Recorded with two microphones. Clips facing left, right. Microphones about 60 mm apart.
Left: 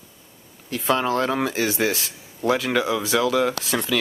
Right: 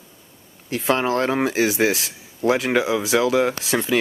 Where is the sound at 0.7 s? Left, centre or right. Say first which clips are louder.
Right 1 dB; right.